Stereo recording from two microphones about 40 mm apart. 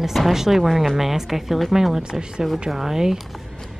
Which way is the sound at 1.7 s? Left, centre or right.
Centre.